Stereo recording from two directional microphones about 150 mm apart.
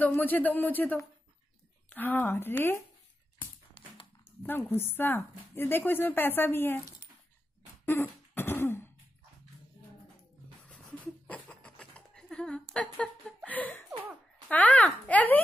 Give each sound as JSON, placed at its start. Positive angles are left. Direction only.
{"t": 0.0, "sound": "a woman's voice", "side_deg": 10}
{"t": 3.8, "sound": "dog", "side_deg": 35}
{"t": 4.2, "sound": "a woman's voice", "side_deg": 15}
{"t": 7.8, "sound": "throat clearing", "side_deg": 15}
{"t": 11.2, "sound": "a sound", "side_deg": 10}
{"t": 14.5, "sound": "a woman's voice", "side_deg": 10}